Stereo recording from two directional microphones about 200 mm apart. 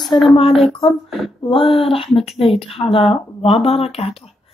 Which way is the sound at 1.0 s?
Centre (ahead or behind).